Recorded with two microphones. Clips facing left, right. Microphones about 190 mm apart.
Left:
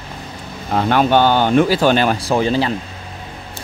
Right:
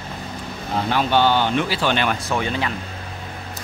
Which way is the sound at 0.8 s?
60° left (ahead or behind).